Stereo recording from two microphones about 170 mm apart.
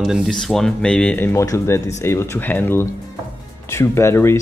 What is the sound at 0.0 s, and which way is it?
Speech, centre (ahead or behind).